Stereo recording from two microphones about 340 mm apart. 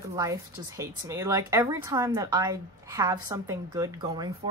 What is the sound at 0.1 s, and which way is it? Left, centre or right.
Speech, centre.